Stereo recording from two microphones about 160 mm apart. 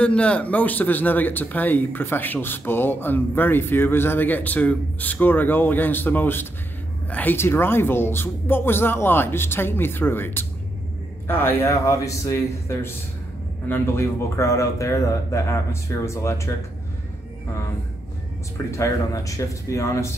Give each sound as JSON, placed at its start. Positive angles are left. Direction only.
{"t": 0.0, "sound": "speech", "side_deg": 5}
{"t": 18.7, "sound": "speech", "side_deg": 20}